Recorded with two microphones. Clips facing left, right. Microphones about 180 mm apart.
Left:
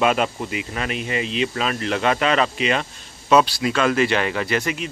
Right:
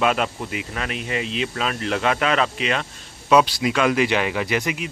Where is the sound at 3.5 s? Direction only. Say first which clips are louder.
Even; 15° right (ahead or behind).